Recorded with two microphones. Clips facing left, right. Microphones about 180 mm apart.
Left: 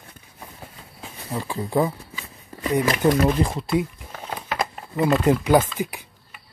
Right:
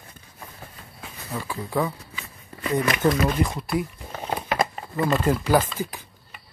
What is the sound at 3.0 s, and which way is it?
Speech, 20° left (ahead or behind).